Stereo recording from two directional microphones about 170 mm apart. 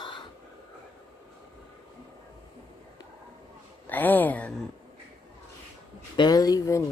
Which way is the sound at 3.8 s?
10° left (ahead or behind).